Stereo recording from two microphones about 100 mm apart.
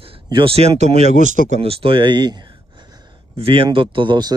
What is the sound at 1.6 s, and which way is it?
Speech, 70° right (ahead or behind).